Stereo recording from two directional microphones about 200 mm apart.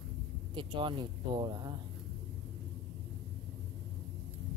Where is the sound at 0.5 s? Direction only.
25° right (ahead or behind).